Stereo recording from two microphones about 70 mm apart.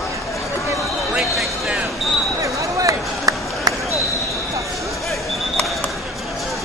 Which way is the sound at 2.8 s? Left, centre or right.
Right.